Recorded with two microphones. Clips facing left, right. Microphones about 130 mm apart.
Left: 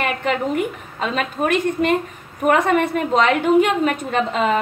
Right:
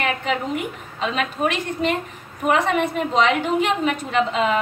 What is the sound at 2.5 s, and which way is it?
A woman's voice, 55° left (ahead or behind).